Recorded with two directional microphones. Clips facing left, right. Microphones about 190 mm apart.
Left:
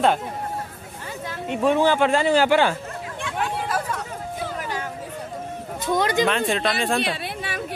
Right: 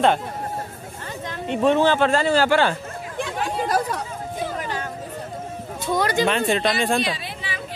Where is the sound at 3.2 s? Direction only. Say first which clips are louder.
Right 2 dB; 35° right (ahead or behind).